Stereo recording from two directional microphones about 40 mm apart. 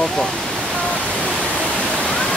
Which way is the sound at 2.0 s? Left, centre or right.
Left.